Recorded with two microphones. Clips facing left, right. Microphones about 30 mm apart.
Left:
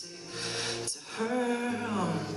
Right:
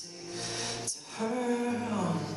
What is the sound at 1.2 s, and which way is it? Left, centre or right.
Female singing, left.